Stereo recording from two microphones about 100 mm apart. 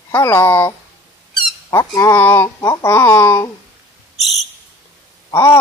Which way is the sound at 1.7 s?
35° left (ahead or behind).